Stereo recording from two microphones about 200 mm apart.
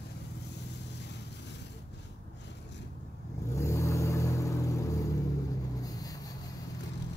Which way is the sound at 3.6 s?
15° left (ahead or behind).